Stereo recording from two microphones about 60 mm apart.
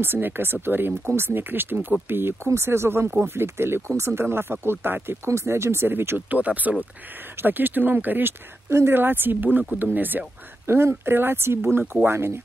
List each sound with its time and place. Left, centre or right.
0.0 s speech: right
3.1 s speech: right
6.3 s speech: right
10.7 s speech: right